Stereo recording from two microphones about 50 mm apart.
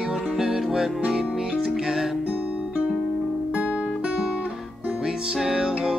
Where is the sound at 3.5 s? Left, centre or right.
Right.